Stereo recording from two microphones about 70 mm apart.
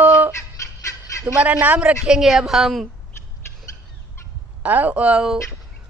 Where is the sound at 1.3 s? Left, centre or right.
Right.